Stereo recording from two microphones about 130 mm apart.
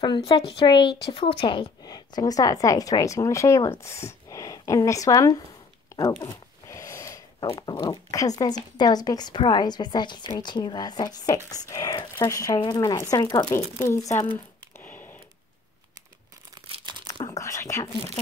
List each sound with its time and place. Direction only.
0.0 s a woman's voice: 40° left (ahead or behind)
1.8 s speech: 30° left (ahead or behind)
5.9 s a sound: 25° left (ahead or behind)
7.4 s a woman's voice: 30° left (ahead or behind)
14.8 s a sound: 15° left (ahead or behind)
16.6 s crumpling: 40° right (ahead or behind)
17.1 s whispering: 25° left (ahead or behind)